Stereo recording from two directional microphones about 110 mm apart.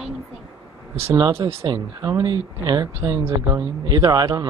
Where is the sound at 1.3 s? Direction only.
50° right (ahead or behind).